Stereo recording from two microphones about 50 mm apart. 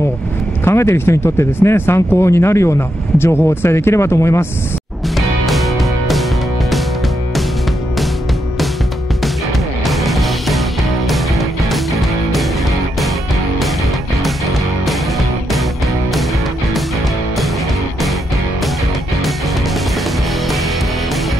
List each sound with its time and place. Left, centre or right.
0.7 s speech: left
3.2 s speech: left
5.1 s music: centre
9.8 s music: centre
14.9 s music: centre